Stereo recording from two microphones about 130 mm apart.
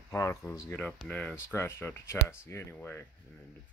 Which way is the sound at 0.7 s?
10° left (ahead or behind).